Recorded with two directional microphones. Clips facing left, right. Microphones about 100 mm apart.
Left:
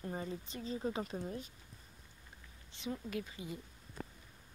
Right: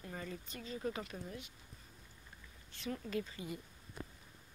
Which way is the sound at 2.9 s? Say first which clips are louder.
Right 1 dB; 10° left (ahead or behind).